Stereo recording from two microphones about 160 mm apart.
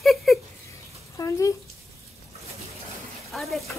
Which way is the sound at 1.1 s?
20° left (ahead or behind).